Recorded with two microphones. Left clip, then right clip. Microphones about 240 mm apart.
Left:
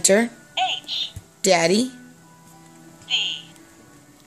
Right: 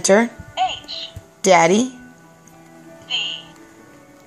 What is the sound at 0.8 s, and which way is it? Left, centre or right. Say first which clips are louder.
Music: left 3 dB; left.